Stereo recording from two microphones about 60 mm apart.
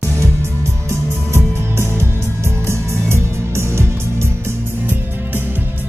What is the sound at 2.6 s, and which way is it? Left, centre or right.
Music, right.